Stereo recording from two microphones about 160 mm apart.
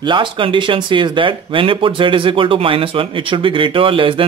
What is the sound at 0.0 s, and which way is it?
Speech, 30° right (ahead or behind).